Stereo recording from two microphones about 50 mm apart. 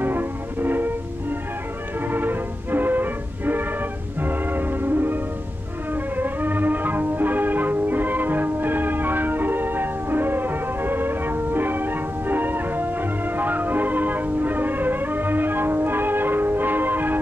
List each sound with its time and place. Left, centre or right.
0.0 s music: right
2.0 s music: right